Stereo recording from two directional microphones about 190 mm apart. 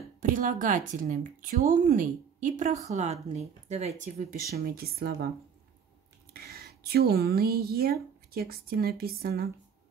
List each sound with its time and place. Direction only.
0.2 s speech: 45° right (ahead or behind)
6.3 s speech: 55° right (ahead or behind)